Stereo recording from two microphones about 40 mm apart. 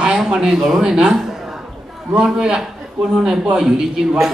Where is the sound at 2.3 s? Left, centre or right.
Centre.